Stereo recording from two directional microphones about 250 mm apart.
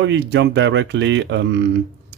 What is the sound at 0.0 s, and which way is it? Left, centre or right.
Speech, right.